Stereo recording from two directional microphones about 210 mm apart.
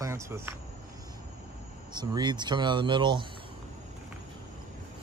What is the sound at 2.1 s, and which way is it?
Speech, 20° right (ahead or behind).